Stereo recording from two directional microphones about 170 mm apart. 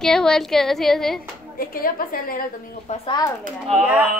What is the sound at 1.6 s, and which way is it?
Speech, 55° left (ahead or behind).